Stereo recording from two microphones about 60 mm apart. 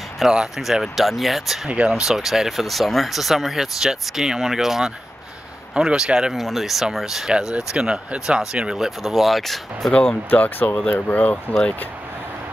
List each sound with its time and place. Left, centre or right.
0.3 s speech: centre
1.7 s speech: centre
6.3 s speech: centre
9.8 s speech: centre
10.3 s speech: left